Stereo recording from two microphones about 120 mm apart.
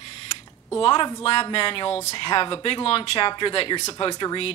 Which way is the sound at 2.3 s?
45° left (ahead or behind).